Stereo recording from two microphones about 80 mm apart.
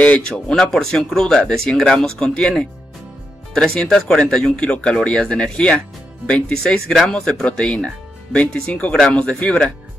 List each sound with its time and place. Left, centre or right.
0.0 s speech: centre
3.5 s speech: centre